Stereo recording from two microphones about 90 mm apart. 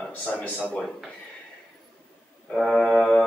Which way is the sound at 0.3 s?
15° left (ahead or behind).